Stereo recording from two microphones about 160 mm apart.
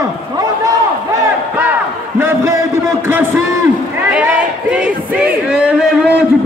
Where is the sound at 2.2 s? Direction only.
15° right (ahead or behind).